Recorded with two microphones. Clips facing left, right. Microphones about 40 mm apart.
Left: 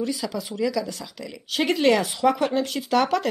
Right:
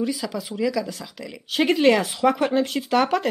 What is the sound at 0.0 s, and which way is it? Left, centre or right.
Speech, centre.